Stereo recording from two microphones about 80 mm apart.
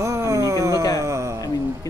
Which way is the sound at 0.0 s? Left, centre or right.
Right.